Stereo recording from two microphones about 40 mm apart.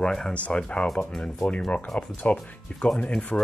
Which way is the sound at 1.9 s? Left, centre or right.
Left.